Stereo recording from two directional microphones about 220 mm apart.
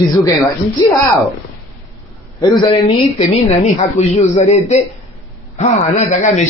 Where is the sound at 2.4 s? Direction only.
20° left (ahead or behind).